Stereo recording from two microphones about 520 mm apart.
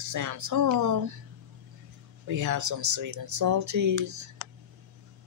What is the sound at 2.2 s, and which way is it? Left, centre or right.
Speech, right.